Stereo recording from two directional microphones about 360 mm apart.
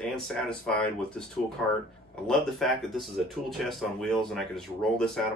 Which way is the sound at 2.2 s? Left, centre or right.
Centre.